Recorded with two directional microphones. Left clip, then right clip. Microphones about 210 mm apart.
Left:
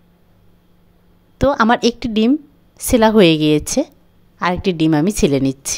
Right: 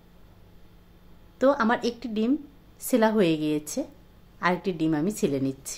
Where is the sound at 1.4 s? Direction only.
40° left (ahead or behind).